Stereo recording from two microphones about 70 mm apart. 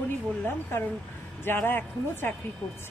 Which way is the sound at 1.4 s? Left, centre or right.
Left.